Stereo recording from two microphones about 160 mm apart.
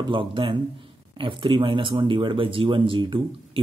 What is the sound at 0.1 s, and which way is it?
Speech, 30° right (ahead or behind).